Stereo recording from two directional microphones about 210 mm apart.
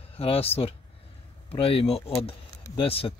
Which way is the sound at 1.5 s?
25° left (ahead or behind).